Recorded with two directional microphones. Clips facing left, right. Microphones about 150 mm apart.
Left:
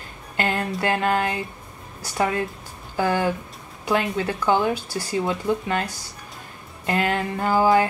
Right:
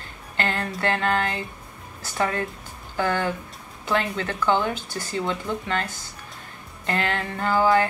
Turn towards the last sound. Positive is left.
turn(degrees=10)  # may be behind; listen again after turning